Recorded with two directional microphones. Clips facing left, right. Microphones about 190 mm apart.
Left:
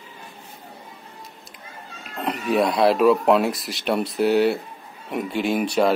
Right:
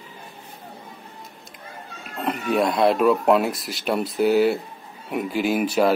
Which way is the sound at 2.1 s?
Centre (ahead or behind).